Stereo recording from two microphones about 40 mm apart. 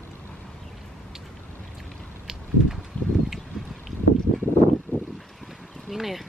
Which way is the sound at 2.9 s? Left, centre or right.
Left.